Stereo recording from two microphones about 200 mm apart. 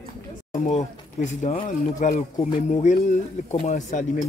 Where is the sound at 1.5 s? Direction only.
35° left (ahead or behind).